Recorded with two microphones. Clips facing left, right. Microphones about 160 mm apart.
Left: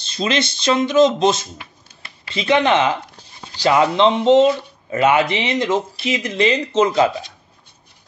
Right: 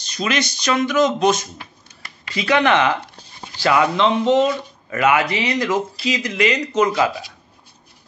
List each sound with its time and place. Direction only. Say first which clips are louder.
0.0 s speech: left 2 dB; 25° left (ahead or behind)